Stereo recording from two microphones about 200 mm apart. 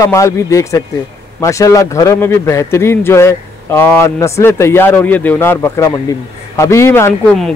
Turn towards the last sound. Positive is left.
turn(degrees=10)  # may be behind; listen again after turning